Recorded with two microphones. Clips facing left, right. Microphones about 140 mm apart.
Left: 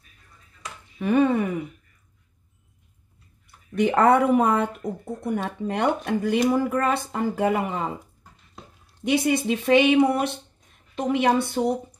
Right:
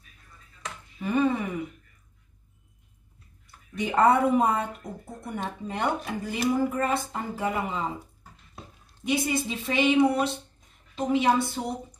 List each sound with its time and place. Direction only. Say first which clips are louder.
0.9 s speech: left 5 dB; 60° left (ahead or behind)
3.7 s speech: left 3 dB; 60° left (ahead or behind)
9.0 s speech: left 5 dB; 65° left (ahead or behind)